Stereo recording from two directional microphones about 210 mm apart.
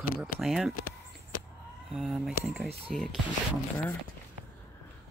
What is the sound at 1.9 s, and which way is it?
Speech, 5° right (ahead or behind).